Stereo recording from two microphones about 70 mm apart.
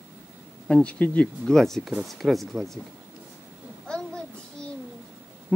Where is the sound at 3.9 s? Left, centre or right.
Centre.